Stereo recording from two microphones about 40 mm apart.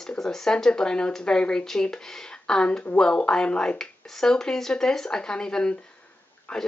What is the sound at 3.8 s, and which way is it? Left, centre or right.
Speech, centre.